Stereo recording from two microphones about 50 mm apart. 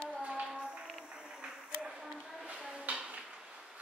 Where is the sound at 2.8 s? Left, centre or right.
Right.